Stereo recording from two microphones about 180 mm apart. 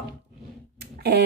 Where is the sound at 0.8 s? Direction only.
65° right (ahead or behind).